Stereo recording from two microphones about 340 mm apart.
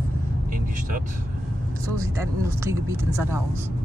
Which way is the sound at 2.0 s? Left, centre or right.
Centre.